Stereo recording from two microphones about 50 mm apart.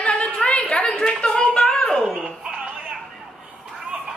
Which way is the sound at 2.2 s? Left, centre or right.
Centre.